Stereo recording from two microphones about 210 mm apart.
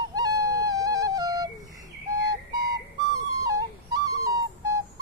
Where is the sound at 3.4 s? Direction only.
15° right (ahead or behind).